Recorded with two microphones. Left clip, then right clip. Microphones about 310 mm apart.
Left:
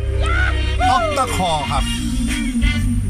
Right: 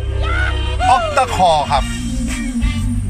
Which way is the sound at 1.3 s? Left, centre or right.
Right.